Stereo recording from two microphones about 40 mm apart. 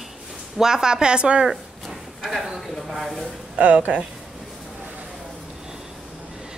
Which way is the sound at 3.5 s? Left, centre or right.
Right.